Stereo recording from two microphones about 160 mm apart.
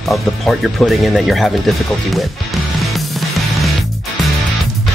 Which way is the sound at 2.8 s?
Centre (ahead or behind).